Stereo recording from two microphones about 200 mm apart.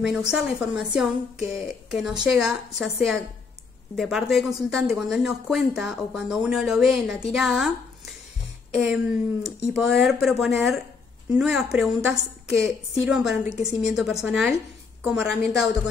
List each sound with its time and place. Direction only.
0.0 s speech: 5° right (ahead or behind)